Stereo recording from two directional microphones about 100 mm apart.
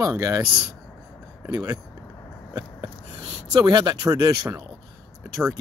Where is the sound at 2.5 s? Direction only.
40° right (ahead or behind).